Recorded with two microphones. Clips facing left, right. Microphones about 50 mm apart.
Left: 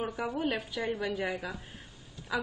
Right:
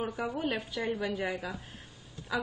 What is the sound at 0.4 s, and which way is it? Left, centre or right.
A woman's voice, centre.